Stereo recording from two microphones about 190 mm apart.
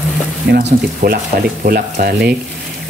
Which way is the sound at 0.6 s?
45° right (ahead or behind).